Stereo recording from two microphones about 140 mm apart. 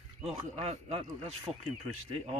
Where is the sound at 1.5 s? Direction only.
5° right (ahead or behind).